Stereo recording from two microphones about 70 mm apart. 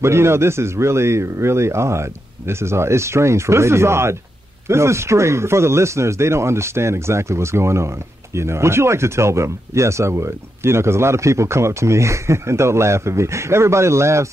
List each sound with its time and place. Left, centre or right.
0.0 s speech: right